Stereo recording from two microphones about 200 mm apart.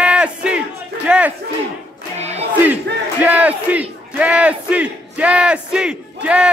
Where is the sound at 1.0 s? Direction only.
5° right (ahead or behind).